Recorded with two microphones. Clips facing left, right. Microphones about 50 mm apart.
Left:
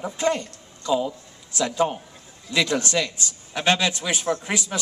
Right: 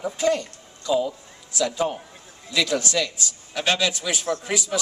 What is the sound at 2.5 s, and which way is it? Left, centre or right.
A man's voice, left.